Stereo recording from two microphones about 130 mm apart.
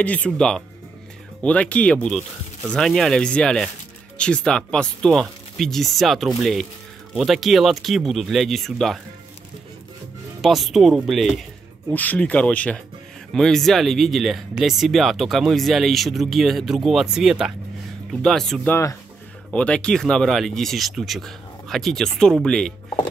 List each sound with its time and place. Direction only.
0.0 s speech: 10° left (ahead or behind)
10.4 s speech: centre (ahead or behind)
11.9 s speech: 10° left (ahead or behind)
18.6 s speech: 20° left (ahead or behind)
19.5 s speech: 10° left (ahead or behind)